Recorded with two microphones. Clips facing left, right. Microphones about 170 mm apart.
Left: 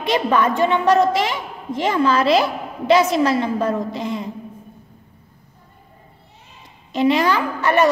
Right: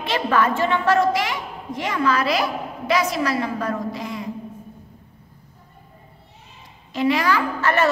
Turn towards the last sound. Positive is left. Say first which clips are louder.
# left 3 dB
turn(degrees=15)  # may be behind; listen again after turning